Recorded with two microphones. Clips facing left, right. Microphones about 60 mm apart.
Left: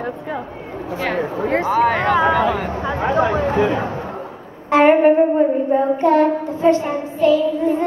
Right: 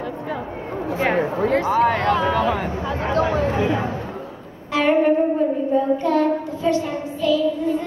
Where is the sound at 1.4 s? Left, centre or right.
Left.